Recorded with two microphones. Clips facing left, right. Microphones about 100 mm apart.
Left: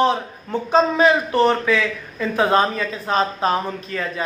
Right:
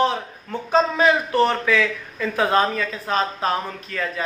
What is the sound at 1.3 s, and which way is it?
Speech, 10° left (ahead or behind).